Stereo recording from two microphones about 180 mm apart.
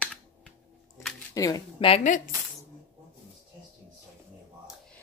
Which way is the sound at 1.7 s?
30° left (ahead or behind).